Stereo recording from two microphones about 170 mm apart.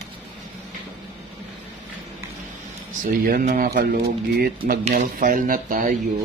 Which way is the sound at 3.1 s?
55° right (ahead or behind).